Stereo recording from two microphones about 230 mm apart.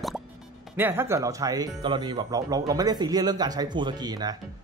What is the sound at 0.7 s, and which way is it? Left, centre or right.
Speech, centre.